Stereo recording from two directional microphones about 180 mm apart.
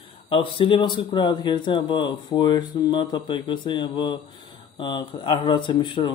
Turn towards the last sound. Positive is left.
turn(degrees=25)  # may be behind; listen again after turning